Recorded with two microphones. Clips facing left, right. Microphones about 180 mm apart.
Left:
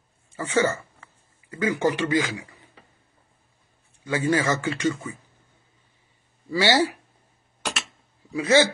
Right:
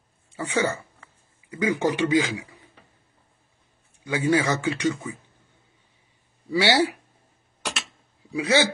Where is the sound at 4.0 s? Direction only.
15° right (ahead or behind).